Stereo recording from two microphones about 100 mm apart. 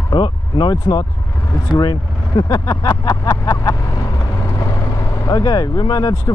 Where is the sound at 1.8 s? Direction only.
45° left (ahead or behind).